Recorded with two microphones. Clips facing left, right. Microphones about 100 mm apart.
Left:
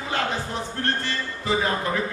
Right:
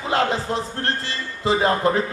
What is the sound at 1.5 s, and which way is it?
Speech, 30° right (ahead or behind).